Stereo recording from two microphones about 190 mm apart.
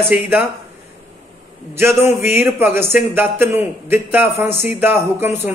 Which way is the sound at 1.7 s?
15° right (ahead or behind).